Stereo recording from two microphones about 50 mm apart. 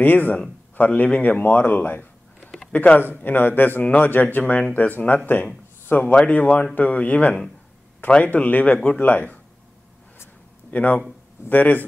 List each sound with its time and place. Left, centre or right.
0.0 s a man's voice: left
2.7 s speech: left
3.3 s a man's voice: left
6.1 s a man's voice: left
10.7 s a man's voice: left